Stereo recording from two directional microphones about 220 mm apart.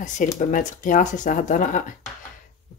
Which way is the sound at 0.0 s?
35° left (ahead or behind).